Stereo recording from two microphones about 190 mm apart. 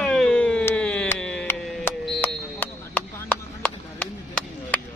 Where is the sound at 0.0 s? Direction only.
5° left (ahead or behind).